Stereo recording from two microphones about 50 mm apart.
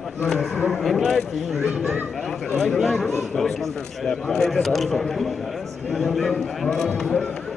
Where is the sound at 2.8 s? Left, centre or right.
Centre.